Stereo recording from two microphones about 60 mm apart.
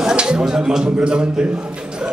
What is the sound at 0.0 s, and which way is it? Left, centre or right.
Speech, centre.